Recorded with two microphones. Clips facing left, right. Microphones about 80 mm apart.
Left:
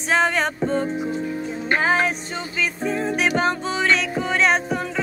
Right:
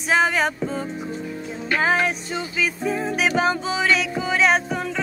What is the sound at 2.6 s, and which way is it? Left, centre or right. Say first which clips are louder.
Music: left 1 dB; centre.